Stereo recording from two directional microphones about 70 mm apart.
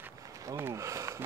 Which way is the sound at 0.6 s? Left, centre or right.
Right.